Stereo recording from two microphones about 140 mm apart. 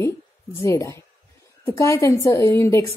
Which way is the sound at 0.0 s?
20° left (ahead or behind).